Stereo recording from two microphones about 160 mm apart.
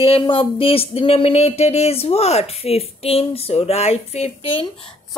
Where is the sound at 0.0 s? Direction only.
35° left (ahead or behind).